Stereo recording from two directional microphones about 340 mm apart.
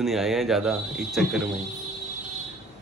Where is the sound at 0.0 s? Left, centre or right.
Centre.